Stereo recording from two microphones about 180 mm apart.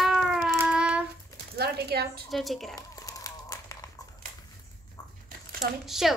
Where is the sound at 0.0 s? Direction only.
Centre (ahead or behind).